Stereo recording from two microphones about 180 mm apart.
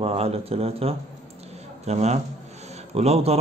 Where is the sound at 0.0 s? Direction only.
35° right (ahead or behind).